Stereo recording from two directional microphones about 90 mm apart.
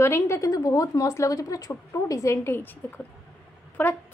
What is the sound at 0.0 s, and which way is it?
A woman's voice, 30° left (ahead or behind).